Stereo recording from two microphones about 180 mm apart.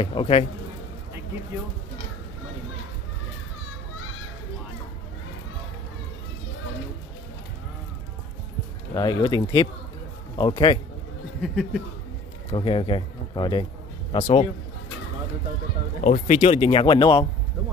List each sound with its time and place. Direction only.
0.0 s speech: 30° left (ahead or behind)
8.9 s speech: 25° left (ahead or behind)
12.4 s speech: 25° left (ahead or behind)
16.0 s speech: 45° left (ahead or behind); by 17.3 s 30° left (ahead or behind)